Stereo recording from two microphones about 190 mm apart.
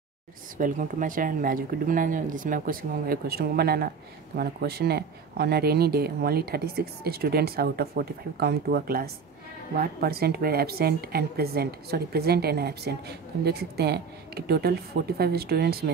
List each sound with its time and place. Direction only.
0.6 s speech: 45° right (ahead or behind)